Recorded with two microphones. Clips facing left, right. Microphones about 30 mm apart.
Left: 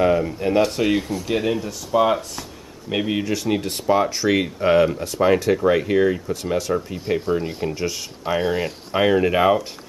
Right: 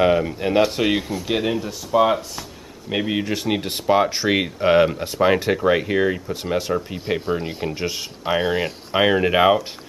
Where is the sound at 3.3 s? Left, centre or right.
Right.